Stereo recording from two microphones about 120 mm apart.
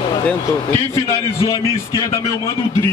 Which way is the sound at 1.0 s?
30° left (ahead or behind).